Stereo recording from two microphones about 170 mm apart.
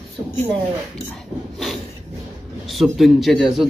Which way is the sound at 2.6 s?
Centre (ahead or behind).